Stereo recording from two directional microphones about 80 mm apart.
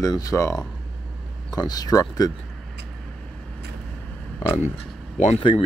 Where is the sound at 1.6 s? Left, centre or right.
Left.